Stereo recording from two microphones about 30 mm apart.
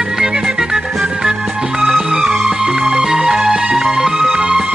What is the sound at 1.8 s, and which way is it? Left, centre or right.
Music, centre.